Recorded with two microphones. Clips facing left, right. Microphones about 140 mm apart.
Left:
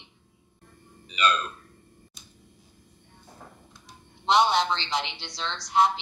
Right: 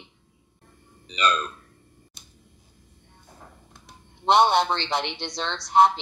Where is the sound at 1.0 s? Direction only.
35° right (ahead or behind).